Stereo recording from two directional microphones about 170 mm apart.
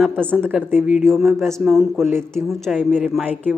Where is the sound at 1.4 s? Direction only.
15° right (ahead or behind).